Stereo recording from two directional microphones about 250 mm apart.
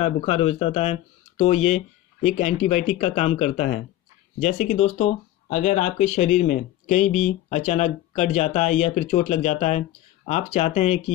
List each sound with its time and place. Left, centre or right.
0.0 s speech: left